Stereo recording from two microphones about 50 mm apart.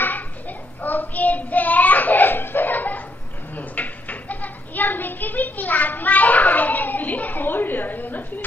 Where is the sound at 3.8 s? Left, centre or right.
Left.